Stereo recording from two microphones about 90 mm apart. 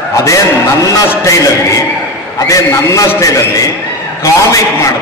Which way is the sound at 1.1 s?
35° left (ahead or behind).